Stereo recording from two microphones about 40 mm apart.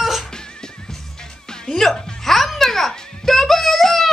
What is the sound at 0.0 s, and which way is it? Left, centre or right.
Music, centre.